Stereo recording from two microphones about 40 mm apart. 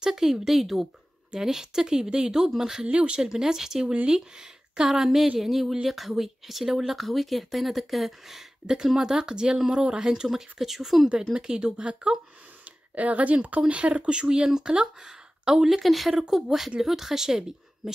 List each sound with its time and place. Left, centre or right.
0.0 s speech: centre
2.9 s speech: right
3.2 s speech: centre
11.1 s speech: centre
12.9 s speech: right; by 15.8 s centre
15.8 s speech: centre